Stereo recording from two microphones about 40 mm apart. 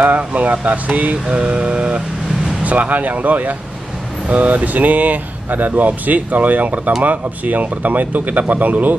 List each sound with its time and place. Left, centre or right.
0.0 s speech: right
1.2 s speech: right